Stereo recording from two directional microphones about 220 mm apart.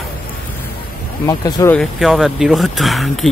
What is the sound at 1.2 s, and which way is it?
Speech, 15° left (ahead or behind).